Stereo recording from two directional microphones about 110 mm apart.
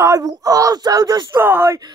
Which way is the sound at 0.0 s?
30° right (ahead or behind).